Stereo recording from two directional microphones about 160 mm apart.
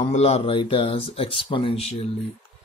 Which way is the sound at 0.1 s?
40° left (ahead or behind).